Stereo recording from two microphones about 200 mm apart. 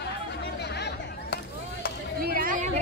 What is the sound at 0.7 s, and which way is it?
Chatter, 55° left (ahead or behind).